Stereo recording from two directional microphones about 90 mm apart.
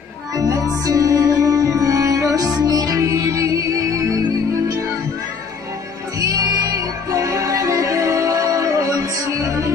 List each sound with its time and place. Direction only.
0.3 s music: 40° right (ahead or behind)
6.1 s music: 40° right (ahead or behind)